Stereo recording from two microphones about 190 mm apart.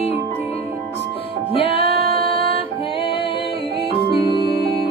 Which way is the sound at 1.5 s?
30° left (ahead or behind).